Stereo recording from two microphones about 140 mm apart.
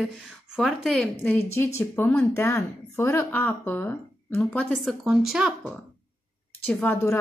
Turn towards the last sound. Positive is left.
turn(degrees=15)  # may be behind; listen again after turning